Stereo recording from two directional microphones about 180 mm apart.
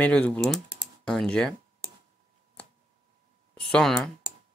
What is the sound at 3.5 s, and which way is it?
Speech, 5° left (ahead or behind).